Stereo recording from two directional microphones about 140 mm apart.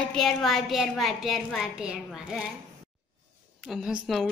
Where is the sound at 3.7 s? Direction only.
Centre (ahead or behind).